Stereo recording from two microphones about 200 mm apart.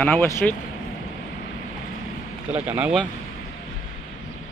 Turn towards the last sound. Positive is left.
turn(degrees=-5)  # may be behind; listen again after turning